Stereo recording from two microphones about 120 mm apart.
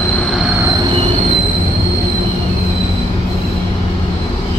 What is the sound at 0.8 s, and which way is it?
Train, 55° right (ahead or behind).